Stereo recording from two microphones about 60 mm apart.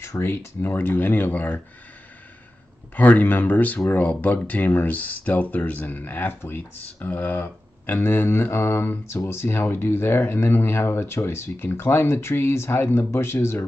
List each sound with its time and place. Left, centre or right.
0.2 s speech: left
3.0 s speech: left